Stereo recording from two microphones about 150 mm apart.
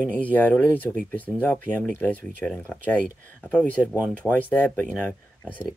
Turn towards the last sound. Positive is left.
turn(degrees=10)  # may be behind; listen again after turning